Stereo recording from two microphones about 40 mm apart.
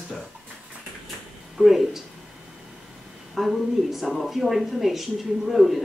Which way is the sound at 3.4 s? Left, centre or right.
Centre.